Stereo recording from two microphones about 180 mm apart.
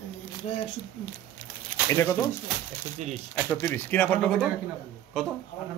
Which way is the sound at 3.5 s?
15° left (ahead or behind).